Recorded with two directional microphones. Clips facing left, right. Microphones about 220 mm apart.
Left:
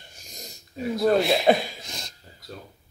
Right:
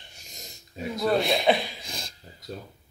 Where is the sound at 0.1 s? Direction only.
Centre (ahead or behind).